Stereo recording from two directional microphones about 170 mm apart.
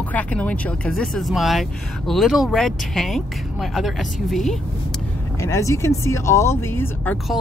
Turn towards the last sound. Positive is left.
turn(degrees=10)  # may be behind; listen again after turning